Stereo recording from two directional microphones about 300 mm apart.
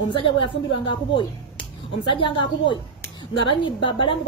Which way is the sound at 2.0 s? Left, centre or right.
Centre.